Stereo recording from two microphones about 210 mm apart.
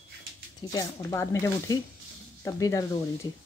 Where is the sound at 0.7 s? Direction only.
15° left (ahead or behind).